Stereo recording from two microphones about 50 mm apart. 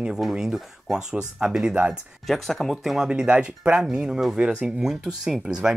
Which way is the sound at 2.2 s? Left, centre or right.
Centre.